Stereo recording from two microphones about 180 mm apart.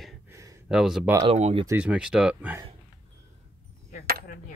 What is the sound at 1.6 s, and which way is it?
Speech, 10° right (ahead or behind).